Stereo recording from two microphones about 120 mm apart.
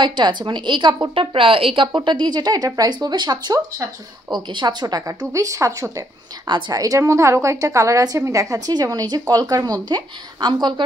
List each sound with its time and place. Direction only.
0.0 s speech: 40° right (ahead or behind)
4.4 s a woman's voice: 40° right (ahead or behind)